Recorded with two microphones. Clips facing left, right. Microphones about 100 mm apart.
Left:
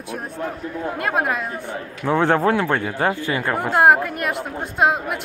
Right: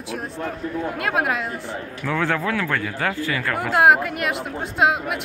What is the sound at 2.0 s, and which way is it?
Speech, 30° left (ahead or behind).